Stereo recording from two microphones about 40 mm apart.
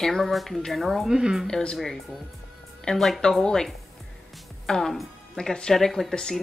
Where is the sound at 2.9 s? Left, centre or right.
Centre.